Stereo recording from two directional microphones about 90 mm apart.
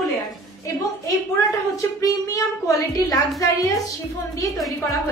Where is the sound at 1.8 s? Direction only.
40° left (ahead or behind).